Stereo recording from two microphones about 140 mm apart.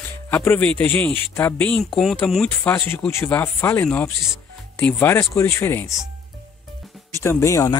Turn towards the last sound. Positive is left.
turn(degrees=20)  # may be behind; listen again after turning